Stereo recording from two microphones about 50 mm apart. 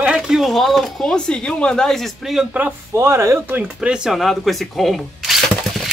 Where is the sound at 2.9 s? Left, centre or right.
Right.